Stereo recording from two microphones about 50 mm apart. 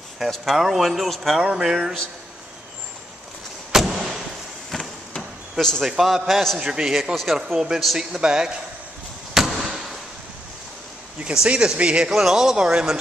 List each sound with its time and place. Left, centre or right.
0.2 s speech: centre
1.4 s speech: centre
3.7 s a sound: centre
4.7 s a sound: centre
5.6 s speech: centre
5.9 s speech: centre
9.3 s basketball bounce: centre
11.4 s speech: centre
12.1 s speech: centre